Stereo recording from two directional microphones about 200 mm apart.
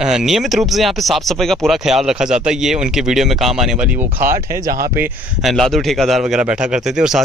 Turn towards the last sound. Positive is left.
turn(degrees=0)  # may be behind; listen again after turning